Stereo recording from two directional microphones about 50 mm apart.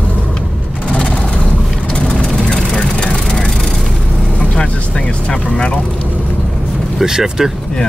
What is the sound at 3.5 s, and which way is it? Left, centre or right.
Vehicle, centre.